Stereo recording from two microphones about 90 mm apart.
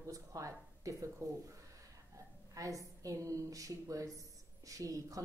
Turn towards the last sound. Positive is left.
turn(degrees=-40)  # may be behind; listen again after turning